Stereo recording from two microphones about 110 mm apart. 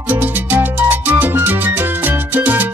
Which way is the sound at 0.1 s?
15° right (ahead or behind).